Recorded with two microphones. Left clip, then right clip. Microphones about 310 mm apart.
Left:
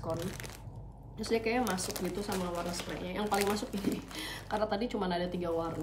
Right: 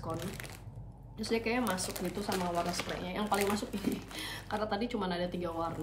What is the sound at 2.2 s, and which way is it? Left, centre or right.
Speech, right.